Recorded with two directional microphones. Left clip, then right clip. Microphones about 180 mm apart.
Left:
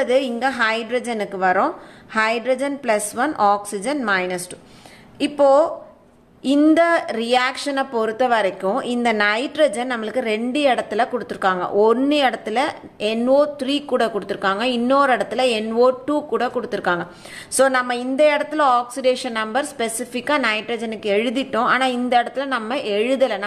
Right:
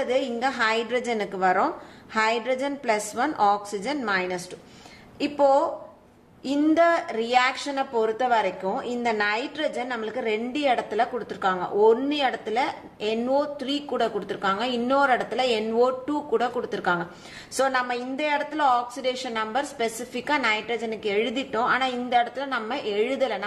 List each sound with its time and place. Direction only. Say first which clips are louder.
0.0 s a woman's voice: left 6 dB; 25° left (ahead or behind)